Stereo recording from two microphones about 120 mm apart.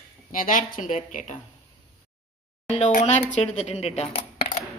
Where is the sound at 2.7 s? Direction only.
85° left; by 4.0 s 65° left (ahead or behind).